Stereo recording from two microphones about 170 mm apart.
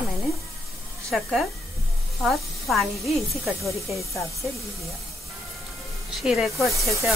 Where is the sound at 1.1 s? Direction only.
Centre (ahead or behind).